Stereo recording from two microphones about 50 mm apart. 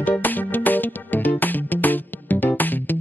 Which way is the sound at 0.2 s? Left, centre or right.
Left.